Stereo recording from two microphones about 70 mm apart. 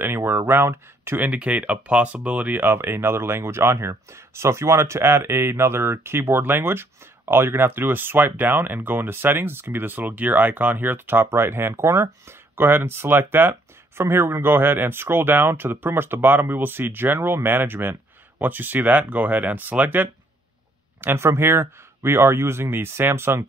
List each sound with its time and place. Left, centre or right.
0.0 s speech: right
21.0 s speech: right